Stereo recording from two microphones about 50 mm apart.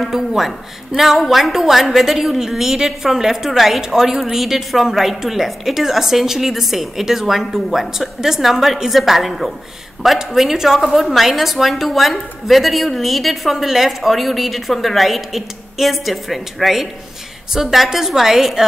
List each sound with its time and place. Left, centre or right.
0.0 s a woman's voice: centre